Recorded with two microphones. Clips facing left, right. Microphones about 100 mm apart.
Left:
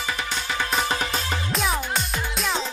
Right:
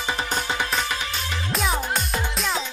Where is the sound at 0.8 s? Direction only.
40° left (ahead or behind).